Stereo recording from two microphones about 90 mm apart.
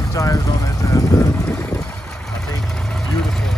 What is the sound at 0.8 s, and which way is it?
Boat, 35° left (ahead or behind).